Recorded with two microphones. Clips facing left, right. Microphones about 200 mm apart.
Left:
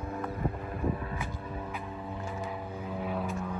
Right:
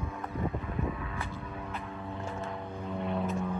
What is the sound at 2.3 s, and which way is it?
Vehicle, 5° left (ahead or behind).